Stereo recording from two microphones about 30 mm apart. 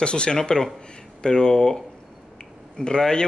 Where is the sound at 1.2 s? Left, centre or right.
Left.